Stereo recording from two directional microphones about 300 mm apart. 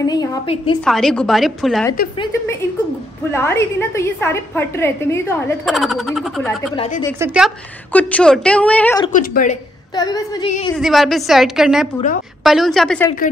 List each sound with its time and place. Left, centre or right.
0.0 s a woman's voice: centre
0.7 s a woman's voice: centre
6.7 s a woman's voice: centre
7.2 s a woman's voice: centre
9.0 s a woman's voice: left
9.9 s a woman's voice: centre
10.8 s a woman's voice: centre